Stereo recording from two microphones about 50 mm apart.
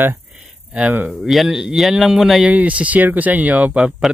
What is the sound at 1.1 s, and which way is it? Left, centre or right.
Speech, centre.